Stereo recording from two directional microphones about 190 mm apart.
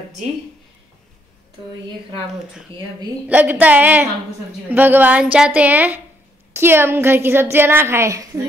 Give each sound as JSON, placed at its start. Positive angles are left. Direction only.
{"t": 3.3, "sound": "a woman's voice", "side_deg": -10}